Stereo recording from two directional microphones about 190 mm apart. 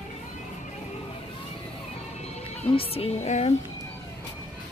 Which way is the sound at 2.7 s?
30° left (ahead or behind).